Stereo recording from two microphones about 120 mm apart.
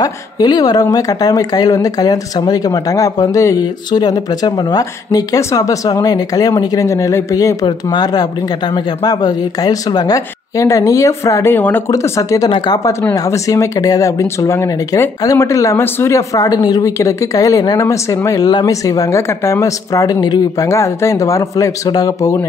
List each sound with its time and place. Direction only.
0.0 s a woman's voice: 35° left (ahead or behind); by 11.8 s 15° left (ahead or behind)
11.9 s speech: 25° left (ahead or behind)
12.4 s a woman's voice: 40° left (ahead or behind)